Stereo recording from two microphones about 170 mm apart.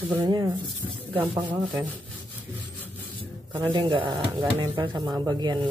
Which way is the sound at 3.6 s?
25° right (ahead or behind).